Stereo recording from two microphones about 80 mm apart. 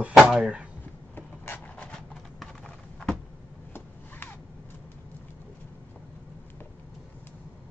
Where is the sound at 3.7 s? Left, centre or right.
Left.